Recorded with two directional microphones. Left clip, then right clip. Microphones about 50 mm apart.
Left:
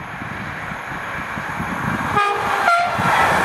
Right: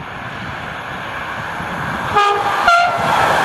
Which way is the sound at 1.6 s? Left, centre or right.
Centre.